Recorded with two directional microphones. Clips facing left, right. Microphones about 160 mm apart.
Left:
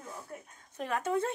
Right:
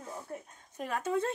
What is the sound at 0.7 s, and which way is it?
Speech, 5° right (ahead or behind).